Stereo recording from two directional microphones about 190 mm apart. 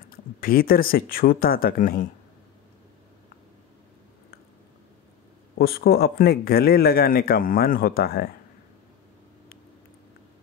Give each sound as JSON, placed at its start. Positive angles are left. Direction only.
{"t": 0.1, "sound": "speech", "side_deg": 50}
{"t": 5.6, "sound": "speech", "side_deg": 55}